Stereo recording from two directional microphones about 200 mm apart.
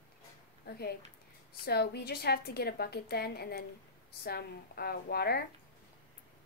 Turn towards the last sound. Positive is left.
turn(degrees=50)  # may be behind; listen again after turning